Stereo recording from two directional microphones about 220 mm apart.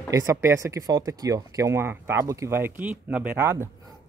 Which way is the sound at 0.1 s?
15° right (ahead or behind).